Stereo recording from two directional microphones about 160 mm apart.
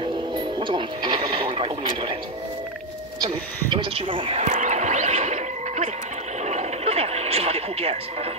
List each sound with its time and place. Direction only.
0.6 s television: 30° right (ahead or behind)
3.3 s a sound: 35° right (ahead or behind)
6.4 s television: 45° right (ahead or behind)